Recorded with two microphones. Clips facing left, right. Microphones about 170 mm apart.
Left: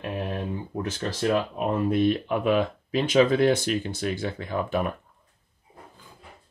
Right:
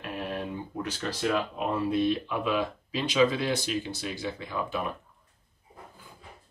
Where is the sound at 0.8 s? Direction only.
50° left (ahead or behind).